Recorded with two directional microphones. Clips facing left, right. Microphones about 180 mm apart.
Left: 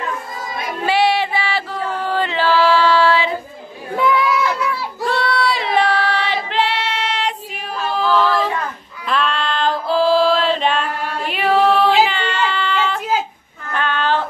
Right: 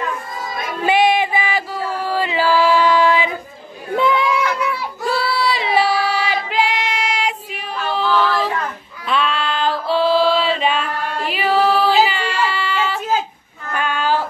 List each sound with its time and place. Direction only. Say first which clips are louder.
0.8 s music: right 1 dB; 20° right (ahead or behind)
3.9 s a sound: even; 25° right (ahead or behind)
5.0 s child singing: left 1 dB; 5° right (ahead or behind)
7.9 s a sound: left 1 dB; centre (ahead or behind)
9.0 s female singing: even; 5° right (ahead or behind)
13.7 s child singing: even; 10° right (ahead or behind)